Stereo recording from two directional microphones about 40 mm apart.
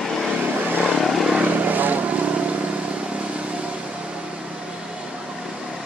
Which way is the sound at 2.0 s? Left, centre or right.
Right.